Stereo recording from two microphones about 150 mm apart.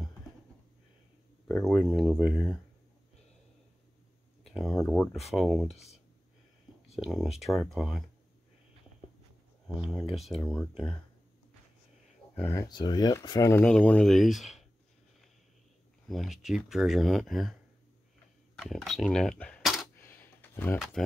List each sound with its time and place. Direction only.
1.5 s speech: 20° left (ahead or behind)
2.2 s speech: centre (ahead or behind)
4.4 s speech: centre (ahead or behind)
7.0 s speech: centre (ahead or behind)
10.0 s speech: centre (ahead or behind)
10.7 s speech: 35° left (ahead or behind)
12.4 s speech: 15° left (ahead or behind)
12.6 s speech: 30° left (ahead or behind)
13.7 s speech: 5° left (ahead or behind)
16.1 s speech: centre (ahead or behind)
18.6 s speech: centre (ahead or behind)
20.0 s a sound: 15° left (ahead or behind)